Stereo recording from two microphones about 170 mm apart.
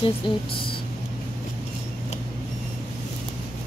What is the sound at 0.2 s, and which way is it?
Speech, 30° left (ahead or behind).